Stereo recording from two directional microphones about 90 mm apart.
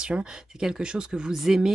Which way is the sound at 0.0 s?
10° right (ahead or behind).